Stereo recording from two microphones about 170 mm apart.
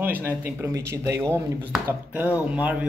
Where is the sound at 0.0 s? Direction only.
10° right (ahead or behind).